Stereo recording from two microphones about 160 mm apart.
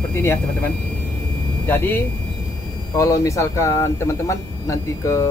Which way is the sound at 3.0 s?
20° left (ahead or behind).